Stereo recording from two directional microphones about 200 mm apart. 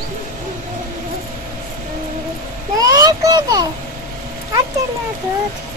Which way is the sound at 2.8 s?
20° right (ahead or behind).